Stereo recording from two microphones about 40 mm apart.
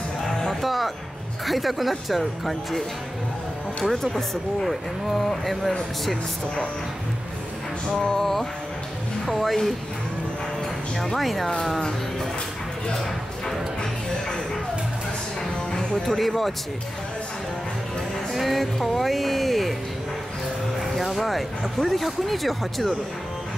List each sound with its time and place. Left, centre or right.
0.5 s music: centre
1.4 s speech: centre
3.9 s speech: centre
8.0 s music: centre
9.2 s speech: centre
11.1 s speech: centre
16.1 s speech: centre
18.3 s speech: centre
20.8 s speech: centre